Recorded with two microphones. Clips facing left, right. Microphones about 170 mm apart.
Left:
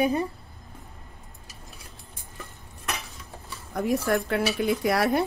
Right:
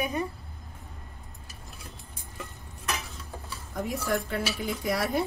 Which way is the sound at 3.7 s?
70° left (ahead or behind).